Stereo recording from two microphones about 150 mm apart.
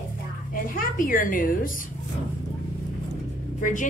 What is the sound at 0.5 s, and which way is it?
A woman's voice, 70° left (ahead or behind).